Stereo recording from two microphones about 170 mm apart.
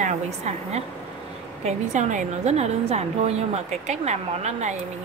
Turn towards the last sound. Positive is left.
turn(degrees=-40)  # may be behind; listen again after turning